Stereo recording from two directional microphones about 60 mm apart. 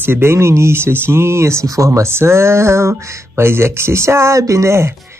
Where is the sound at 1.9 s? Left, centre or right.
Right.